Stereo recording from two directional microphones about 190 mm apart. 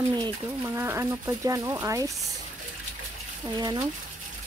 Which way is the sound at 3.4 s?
20° right (ahead or behind).